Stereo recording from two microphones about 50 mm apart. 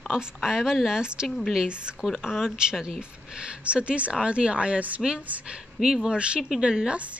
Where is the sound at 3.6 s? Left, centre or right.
Right.